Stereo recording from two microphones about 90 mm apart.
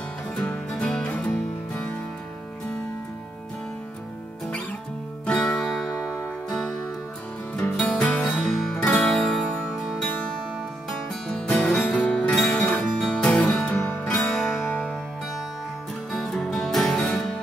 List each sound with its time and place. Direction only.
0.4 s music: 10° left (ahead or behind)
5.2 s music: 5° left (ahead or behind)
7.5 s music: 15° left (ahead or behind)
10.9 s music: 5° left (ahead or behind)
12.6 s guitar: 15° left (ahead or behind)
13.8 s music: 15° left (ahead or behind)
16.1 s music: 5° left (ahead or behind)